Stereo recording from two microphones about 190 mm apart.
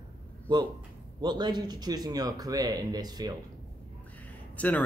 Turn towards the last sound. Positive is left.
turn(degrees=10)  # may be behind; listen again after turning